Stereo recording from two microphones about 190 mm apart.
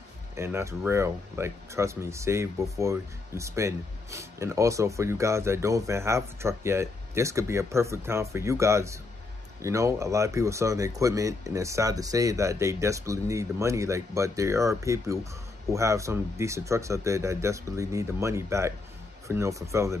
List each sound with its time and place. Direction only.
0.4 s speech: 15° right (ahead or behind)